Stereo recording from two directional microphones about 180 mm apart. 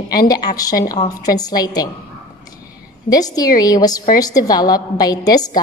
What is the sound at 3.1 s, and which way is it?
A woman's voice, 20° left (ahead or behind).